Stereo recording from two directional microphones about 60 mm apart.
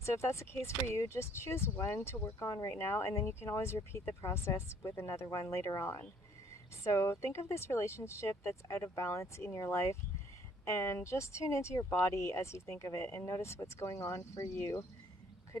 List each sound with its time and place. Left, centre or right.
0.0 s speech: left
2.2 s speech: left
2.8 s speech: left
6.8 s speech: left